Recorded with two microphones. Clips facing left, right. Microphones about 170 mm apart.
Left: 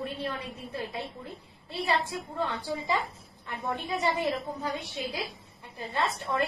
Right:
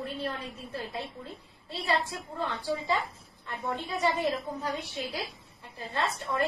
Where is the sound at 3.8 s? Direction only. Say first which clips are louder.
Right 1 dB; 20° left (ahead or behind).